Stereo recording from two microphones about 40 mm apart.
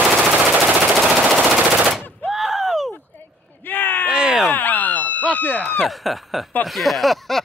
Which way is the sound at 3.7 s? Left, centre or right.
Left.